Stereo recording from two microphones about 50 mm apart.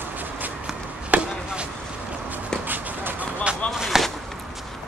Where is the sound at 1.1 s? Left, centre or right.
Right.